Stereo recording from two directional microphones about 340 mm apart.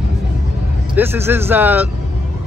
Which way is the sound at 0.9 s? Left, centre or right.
Centre.